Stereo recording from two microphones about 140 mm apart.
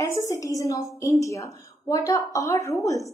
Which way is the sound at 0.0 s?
25° left (ahead or behind).